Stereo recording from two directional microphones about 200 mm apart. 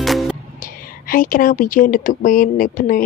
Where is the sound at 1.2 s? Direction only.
45° left (ahead or behind).